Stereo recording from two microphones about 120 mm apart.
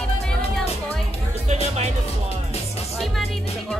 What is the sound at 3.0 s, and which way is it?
Music, centre (ahead or behind).